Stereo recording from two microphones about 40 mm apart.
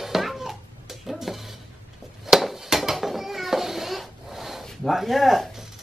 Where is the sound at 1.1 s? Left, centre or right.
Centre.